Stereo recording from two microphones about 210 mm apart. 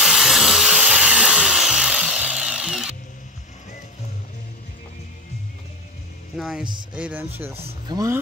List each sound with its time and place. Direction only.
0.0 s tools: centre (ahead or behind)
6.3 s speech: centre (ahead or behind)
7.5 s speech: 30° right (ahead or behind)